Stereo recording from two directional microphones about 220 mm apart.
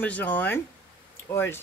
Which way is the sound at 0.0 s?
5° left (ahead or behind).